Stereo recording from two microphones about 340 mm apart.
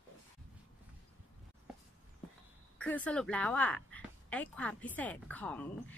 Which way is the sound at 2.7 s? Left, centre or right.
Centre.